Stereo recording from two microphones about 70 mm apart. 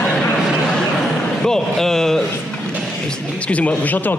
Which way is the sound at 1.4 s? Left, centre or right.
Centre.